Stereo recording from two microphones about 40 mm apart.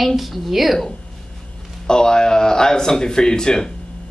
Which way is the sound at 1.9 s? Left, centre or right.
Centre.